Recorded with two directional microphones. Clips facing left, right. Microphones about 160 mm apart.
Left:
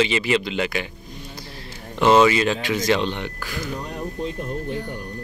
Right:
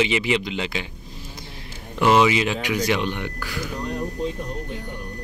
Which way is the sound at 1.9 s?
25° left (ahead or behind).